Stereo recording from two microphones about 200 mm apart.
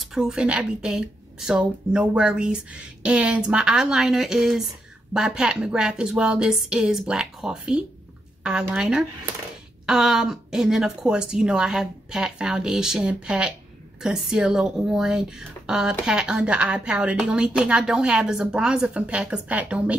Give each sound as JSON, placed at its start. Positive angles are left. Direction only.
{"t": 0.0, "sound": "speech", "side_deg": 0}